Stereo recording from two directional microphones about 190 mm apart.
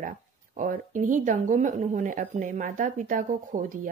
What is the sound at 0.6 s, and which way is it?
Speech, 45° right (ahead or behind).